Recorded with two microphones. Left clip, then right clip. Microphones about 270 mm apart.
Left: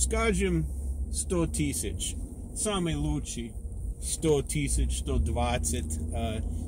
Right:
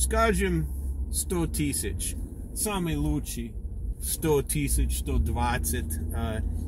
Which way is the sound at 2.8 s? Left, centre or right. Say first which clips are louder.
Right 2 dB; centre.